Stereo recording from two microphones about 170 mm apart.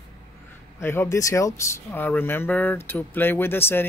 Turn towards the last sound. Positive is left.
turn(degrees=15)  # may be behind; listen again after turning